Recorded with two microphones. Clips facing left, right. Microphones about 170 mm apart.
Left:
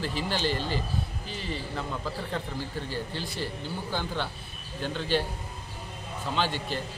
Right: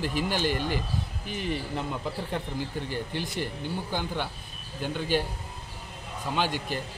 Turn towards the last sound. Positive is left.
turn(degrees=-10)  # may be behind; listen again after turning